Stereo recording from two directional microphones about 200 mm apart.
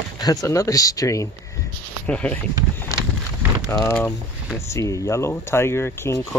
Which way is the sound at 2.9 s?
15° left (ahead or behind).